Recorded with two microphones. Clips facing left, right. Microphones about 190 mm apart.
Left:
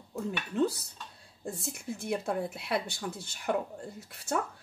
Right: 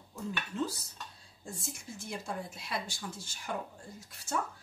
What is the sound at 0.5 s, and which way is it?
Speech, 60° left (ahead or behind).